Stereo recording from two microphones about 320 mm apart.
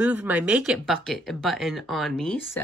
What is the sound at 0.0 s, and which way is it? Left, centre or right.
Speech, centre.